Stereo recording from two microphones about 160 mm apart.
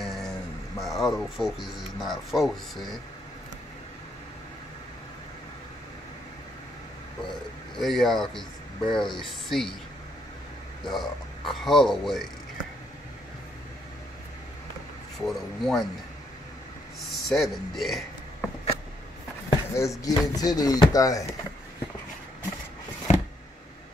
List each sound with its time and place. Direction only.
0.0 s speech: centre (ahead or behind)
7.7 s speech: centre (ahead or behind)
10.9 s speech: centre (ahead or behind)
15.1 s speech: centre (ahead or behind)
17.1 s a man's voice: centre (ahead or behind)
19.5 s speech: 20° left (ahead or behind)
23.1 s a sound: 45° left (ahead or behind)